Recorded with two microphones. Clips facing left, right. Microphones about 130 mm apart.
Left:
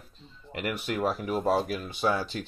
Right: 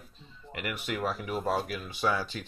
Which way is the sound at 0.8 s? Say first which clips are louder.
Left 3 dB; 5° left (ahead or behind).